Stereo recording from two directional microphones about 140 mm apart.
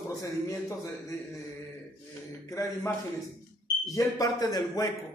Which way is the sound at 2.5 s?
20° left (ahead or behind).